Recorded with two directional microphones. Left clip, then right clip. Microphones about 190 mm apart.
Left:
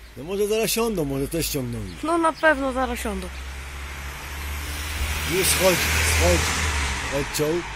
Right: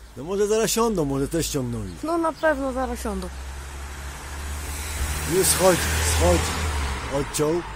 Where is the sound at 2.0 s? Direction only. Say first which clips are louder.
Left 3 dB; 10° left (ahead or behind).